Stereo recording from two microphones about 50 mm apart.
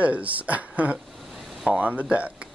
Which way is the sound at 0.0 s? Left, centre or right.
Right.